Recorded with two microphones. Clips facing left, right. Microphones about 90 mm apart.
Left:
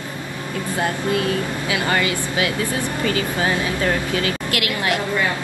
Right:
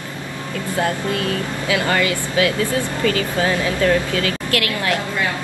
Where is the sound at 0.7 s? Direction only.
25° left (ahead or behind).